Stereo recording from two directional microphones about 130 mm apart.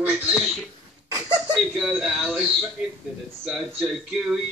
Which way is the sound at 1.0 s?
30° right (ahead or behind).